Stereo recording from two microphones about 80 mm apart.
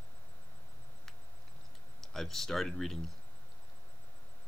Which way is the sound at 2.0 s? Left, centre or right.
Centre.